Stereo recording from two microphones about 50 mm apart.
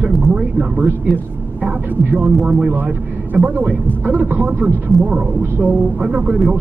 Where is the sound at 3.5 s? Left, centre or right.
Right.